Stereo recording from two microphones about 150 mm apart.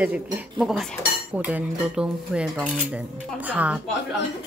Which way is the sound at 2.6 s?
10° right (ahead or behind).